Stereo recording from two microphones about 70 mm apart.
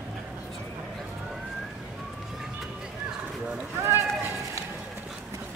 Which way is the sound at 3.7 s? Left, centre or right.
Right.